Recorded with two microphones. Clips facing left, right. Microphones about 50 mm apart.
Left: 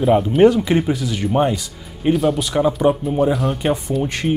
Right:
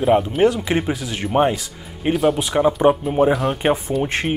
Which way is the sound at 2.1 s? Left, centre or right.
Centre.